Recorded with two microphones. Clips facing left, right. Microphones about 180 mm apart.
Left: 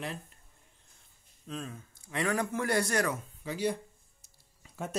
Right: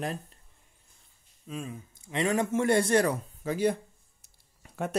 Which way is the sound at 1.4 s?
10° right (ahead or behind).